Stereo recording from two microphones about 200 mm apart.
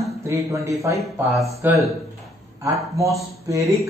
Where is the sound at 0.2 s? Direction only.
15° right (ahead or behind).